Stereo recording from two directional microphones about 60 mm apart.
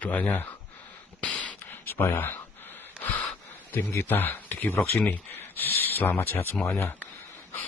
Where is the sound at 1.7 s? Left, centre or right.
Left.